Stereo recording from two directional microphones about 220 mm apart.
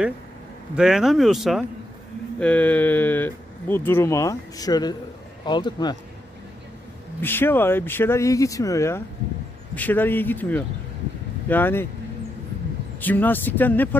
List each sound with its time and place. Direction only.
0.7 s speech: centre (ahead or behind); by 5.9 s 20° left (ahead or behind)
7.2 s speech: 10° left (ahead or behind)
13.0 s speech: 10° left (ahead or behind)